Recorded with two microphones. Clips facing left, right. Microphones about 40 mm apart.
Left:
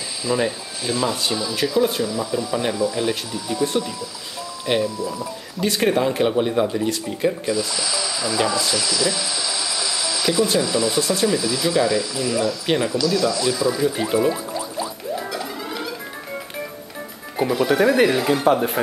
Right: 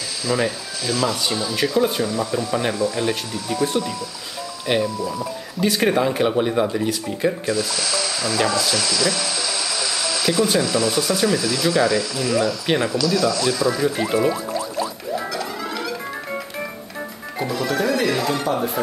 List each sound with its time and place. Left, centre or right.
0.2 s speech: left
1.4 s speech: centre
2.7 s speech: centre
12.6 s speech: centre
14.1 s speech: centre
15.3 s music: centre
17.4 s speech: centre